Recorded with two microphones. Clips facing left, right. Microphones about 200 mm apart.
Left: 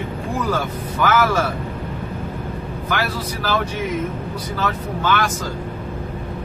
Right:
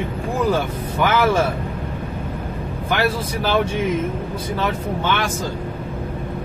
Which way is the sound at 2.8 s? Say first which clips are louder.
Right 4 dB; 25° right (ahead or behind).